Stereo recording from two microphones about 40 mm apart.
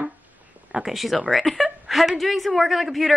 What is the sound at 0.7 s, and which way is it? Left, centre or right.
Speech, right.